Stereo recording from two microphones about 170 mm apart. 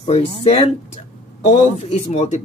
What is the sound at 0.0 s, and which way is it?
Speech, 35° left (ahead or behind).